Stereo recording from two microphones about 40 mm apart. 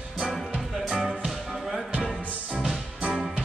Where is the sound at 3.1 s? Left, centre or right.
Centre.